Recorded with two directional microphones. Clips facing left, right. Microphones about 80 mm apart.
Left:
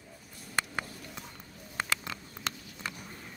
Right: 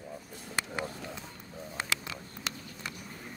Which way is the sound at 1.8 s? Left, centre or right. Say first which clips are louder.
Left 1 dB; left.